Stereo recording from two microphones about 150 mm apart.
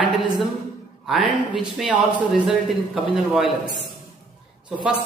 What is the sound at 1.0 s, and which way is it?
A man's voice, 5° right (ahead or behind).